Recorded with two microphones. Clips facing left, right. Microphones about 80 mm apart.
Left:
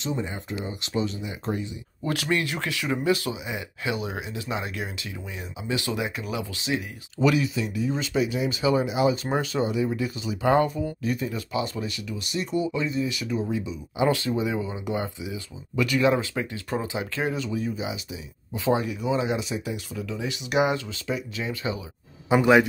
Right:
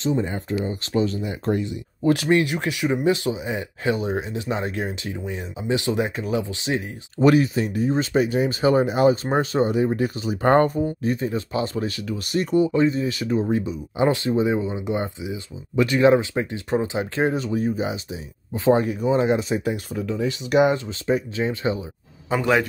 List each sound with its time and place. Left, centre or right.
0.0 s speech: right
2.0 s speech: right
3.4 s speech: right
10.9 s speech: right
14.0 s speech: right
22.3 s a man's voice: centre